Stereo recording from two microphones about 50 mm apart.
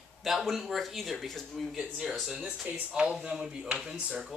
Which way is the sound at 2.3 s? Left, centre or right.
Centre.